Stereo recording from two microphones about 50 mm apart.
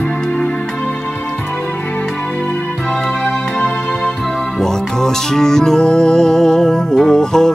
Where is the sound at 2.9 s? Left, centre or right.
Centre.